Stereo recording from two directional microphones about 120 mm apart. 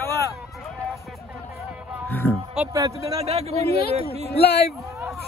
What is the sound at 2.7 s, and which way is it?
Speech, 30° right (ahead or behind).